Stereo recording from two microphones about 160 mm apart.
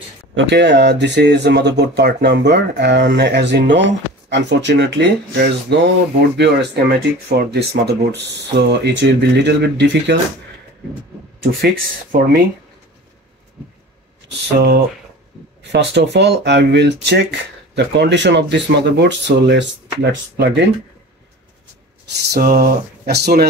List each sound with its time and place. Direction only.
0.5 s speech: 90° right
11.6 s speech: 65° right (ahead or behind)
15.6 s speech: 90° right
22.1 s speech: 75° right (ahead or behind)